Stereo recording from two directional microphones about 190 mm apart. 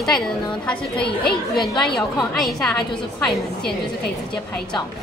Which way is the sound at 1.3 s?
5° left (ahead or behind).